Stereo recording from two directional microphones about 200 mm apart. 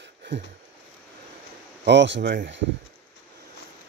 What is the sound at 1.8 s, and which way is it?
Speech, 60° right (ahead or behind).